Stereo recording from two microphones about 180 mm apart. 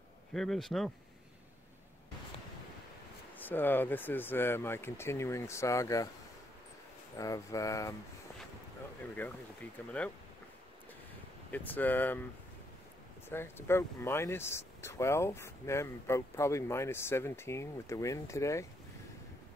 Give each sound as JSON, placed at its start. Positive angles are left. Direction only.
{"t": 0.3, "sound": "speech", "side_deg": 0}
{"t": 3.3, "sound": "speech", "side_deg": 10}
{"t": 7.2, "sound": "speech", "side_deg": 20}
{"t": 9.2, "sound": "speech", "side_deg": 10}
{"t": 11.5, "sound": "speech", "side_deg": 10}
{"t": 13.3, "sound": "speech", "side_deg": 15}